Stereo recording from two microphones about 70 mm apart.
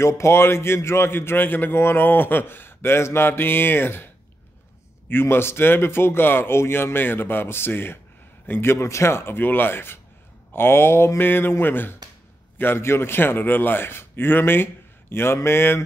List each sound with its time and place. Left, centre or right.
0.0 s speech: left
5.1 s speech: left